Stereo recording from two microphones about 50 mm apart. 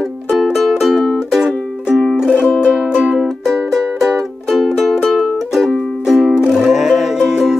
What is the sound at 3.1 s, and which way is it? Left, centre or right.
Music, centre.